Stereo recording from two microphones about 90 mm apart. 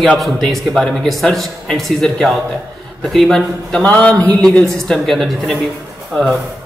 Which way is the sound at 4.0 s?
15° left (ahead or behind).